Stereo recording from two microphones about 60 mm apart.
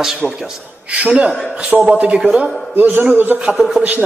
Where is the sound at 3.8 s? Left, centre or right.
Right.